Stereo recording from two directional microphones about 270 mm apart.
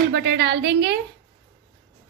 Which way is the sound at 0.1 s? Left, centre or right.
Right.